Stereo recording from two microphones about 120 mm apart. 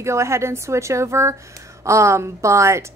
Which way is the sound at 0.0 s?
25° right (ahead or behind).